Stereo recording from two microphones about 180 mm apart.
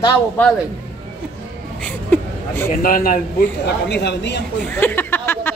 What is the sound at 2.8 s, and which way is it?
A man's voice, 55° left (ahead or behind).